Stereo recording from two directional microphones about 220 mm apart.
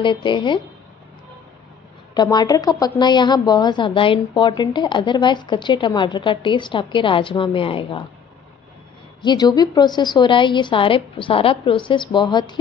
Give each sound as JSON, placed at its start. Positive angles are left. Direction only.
{"t": 0.0, "sound": "a woman's voice", "side_deg": 20}
{"t": 2.1, "sound": "a woman's voice", "side_deg": 20}
{"t": 9.2, "sound": "a woman's voice", "side_deg": 20}